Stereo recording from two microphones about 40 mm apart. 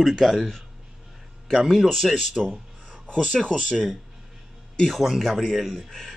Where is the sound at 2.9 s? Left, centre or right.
Right.